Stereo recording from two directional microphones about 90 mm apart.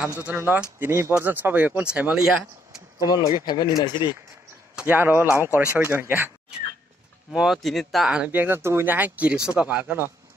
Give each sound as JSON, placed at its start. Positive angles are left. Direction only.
{"t": 0.2, "sound": "speech", "side_deg": -15}
{"t": 3.1, "sound": "speech", "side_deg": 50}
{"t": 4.7, "sound": "speech", "side_deg": -20}
{"t": 7.3, "sound": "speech", "side_deg": -5}
{"t": 8.3, "sound": "speech", "side_deg": -25}